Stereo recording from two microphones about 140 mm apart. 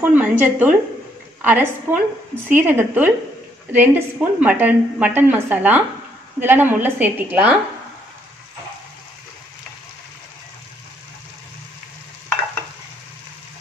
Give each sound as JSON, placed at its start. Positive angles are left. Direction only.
{"t": 0.1, "sound": "a woman's voice", "side_deg": -10}